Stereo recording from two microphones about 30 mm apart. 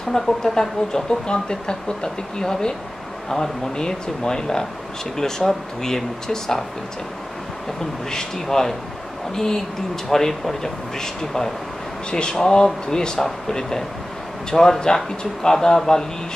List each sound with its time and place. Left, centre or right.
0.1 s speech: centre
8.1 s speech: centre
12.1 s speech: left